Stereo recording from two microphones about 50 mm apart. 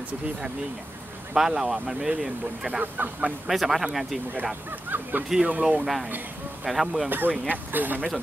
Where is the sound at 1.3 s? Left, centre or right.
Centre.